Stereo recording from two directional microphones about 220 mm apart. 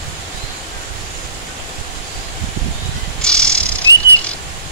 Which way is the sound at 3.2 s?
5° left (ahead or behind).